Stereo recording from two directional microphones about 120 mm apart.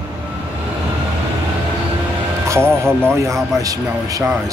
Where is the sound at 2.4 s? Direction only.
20° right (ahead or behind).